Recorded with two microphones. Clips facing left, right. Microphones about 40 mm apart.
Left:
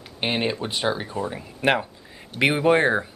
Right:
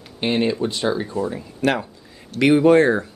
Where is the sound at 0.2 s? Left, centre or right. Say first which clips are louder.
Right 5 dB; centre.